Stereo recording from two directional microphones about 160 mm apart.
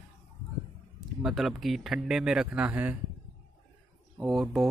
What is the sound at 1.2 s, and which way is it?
Speech, centre (ahead or behind).